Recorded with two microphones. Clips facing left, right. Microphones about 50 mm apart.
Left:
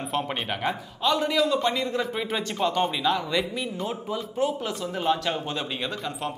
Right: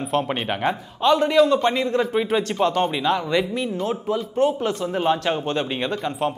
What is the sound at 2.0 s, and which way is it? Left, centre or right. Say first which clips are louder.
A man's voice: right 7 dB; centre.